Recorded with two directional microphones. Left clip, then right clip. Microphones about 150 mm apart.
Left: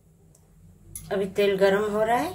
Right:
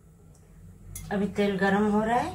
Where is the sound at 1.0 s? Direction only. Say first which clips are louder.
Left 4 dB; 75° left (ahead or behind).